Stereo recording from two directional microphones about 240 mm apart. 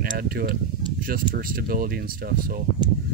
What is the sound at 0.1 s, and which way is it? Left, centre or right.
Speech, right.